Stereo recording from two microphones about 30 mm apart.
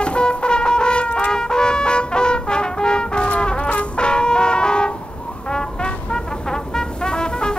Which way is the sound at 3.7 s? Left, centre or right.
Left.